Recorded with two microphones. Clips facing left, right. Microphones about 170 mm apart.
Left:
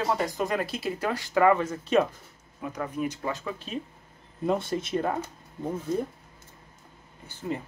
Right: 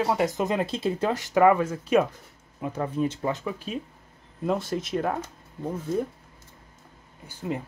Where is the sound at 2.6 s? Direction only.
30° right (ahead or behind).